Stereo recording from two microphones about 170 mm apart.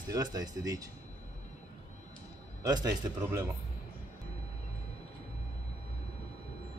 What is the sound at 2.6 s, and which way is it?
Speech, 20° right (ahead or behind).